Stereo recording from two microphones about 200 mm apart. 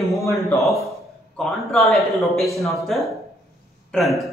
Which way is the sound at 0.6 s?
Centre (ahead or behind).